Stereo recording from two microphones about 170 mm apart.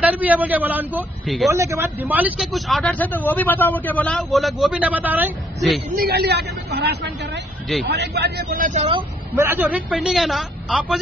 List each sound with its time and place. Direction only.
0.0 s a man's voice: 10° right (ahead or behind)
1.2 s speech: centre (ahead or behind)
1.5 s speech: 15° right (ahead or behind)
5.9 s a woman's voice: 70° right (ahead or behind); by 8.8 s 50° right (ahead or behind)
9.3 s a man's voice: 10° right (ahead or behind)